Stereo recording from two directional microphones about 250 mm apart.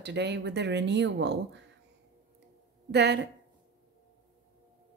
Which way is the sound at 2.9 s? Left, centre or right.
Right.